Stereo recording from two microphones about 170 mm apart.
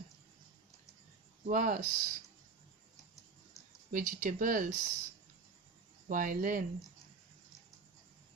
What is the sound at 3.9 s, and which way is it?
Speech, 50° right (ahead or behind).